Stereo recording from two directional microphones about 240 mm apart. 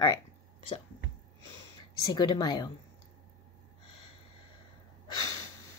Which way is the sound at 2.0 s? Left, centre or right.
Centre.